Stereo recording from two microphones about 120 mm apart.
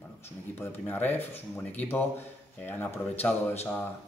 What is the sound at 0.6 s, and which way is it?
Speech, 15° left (ahead or behind).